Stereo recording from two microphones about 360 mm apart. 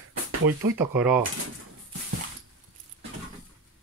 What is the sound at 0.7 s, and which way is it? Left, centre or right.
Speech, centre.